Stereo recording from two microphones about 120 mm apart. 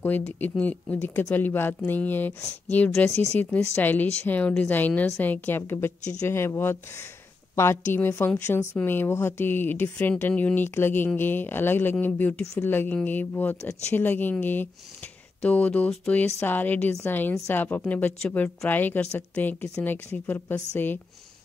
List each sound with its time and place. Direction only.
0.4 s speech: 10° left (ahead or behind)